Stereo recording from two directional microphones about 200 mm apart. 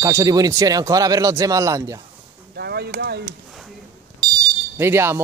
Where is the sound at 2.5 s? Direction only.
55° right (ahead or behind).